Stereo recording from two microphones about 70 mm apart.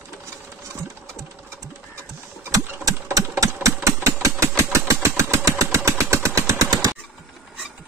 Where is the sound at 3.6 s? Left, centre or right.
Right.